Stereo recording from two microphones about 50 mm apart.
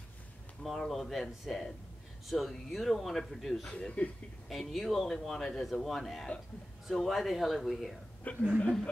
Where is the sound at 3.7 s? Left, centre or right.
Left.